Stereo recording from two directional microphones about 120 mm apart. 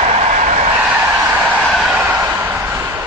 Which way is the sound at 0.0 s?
65° right (ahead or behind).